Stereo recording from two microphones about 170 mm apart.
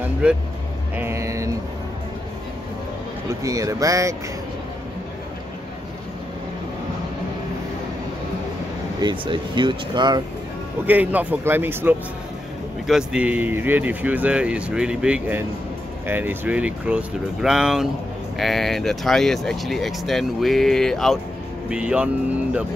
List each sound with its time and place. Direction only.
0.9 s speech: 15° right (ahead or behind)
3.3 s speech: 20° right (ahead or behind)
9.0 s speech: 30° right (ahead or behind)
10.9 s speech: 10° right (ahead or behind)